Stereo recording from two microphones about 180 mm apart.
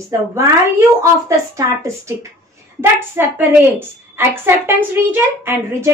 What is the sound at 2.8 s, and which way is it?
A woman's voice, 10° right (ahead or behind).